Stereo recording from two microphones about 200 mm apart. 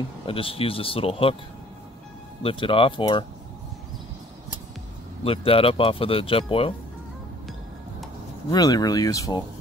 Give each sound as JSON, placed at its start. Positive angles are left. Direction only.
{"t": 0.3, "sound": "speech", "side_deg": 30}
{"t": 2.4, "sound": "speech", "side_deg": 25}
{"t": 5.2, "sound": "speech", "side_deg": 30}
{"t": 8.5, "sound": "speech", "side_deg": 20}